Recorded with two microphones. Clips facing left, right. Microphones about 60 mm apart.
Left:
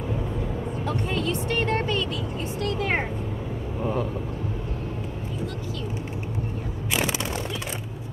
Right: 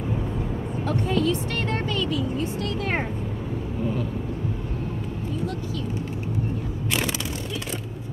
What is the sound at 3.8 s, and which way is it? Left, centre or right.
Speech, left.